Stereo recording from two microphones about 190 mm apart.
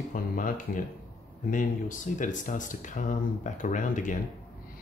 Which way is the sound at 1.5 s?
45° left (ahead or behind).